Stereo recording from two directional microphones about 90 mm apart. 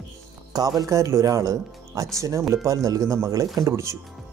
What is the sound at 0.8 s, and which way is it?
Speech, 35° right (ahead or behind).